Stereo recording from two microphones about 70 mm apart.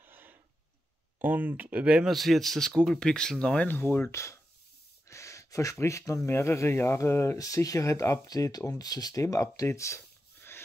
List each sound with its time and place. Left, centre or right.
0.0 s a sound: right
1.2 s speech: right
2.0 s speech: centre
3.6 s speech: left
4.1 s speech: left
5.0 s a sound: left
6.2 s speech: left
7.3 s speech: left
9.6 s a sound: left